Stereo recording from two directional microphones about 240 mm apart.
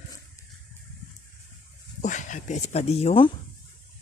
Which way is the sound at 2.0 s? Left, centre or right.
Left.